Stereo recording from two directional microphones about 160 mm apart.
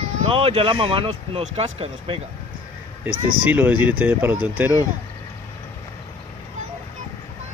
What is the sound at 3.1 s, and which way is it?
Speech, 65° right (ahead or behind).